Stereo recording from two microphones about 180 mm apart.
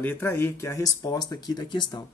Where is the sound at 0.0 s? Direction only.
10° left (ahead or behind).